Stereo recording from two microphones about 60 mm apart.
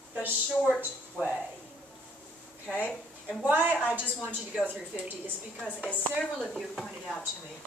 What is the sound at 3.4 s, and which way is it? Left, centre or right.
A woman's voice, right.